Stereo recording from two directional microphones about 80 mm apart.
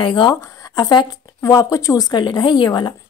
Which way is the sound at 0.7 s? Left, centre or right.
Left.